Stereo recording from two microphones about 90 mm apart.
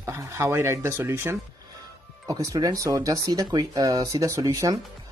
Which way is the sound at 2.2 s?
40° right (ahead or behind).